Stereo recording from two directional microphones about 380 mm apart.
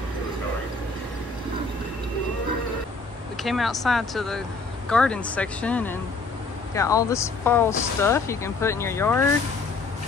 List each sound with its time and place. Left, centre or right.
3.4 s speech: centre